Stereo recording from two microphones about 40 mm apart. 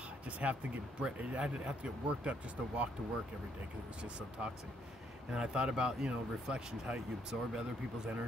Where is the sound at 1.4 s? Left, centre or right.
Right.